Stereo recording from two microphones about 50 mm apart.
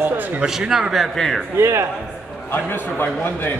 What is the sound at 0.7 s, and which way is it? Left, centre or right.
Speech, centre.